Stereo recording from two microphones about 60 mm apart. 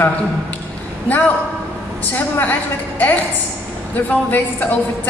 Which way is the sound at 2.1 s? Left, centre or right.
Left.